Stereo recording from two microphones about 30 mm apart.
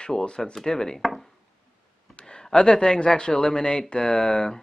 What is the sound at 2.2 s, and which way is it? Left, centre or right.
Speech, left.